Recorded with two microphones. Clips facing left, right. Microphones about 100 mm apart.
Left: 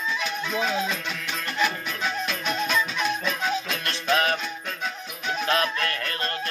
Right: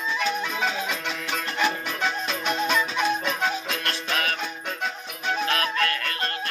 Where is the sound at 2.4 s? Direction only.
20° right (ahead or behind).